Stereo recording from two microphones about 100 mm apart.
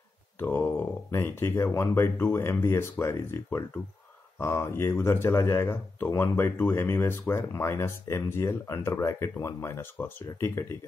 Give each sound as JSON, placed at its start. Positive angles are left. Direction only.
{"t": 0.4, "sound": "speech", "side_deg": 25}